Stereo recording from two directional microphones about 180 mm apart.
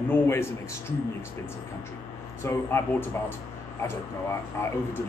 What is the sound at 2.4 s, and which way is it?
Speech, 15° left (ahead or behind).